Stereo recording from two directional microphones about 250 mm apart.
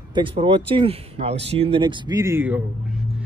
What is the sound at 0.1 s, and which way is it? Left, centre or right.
Speech, centre.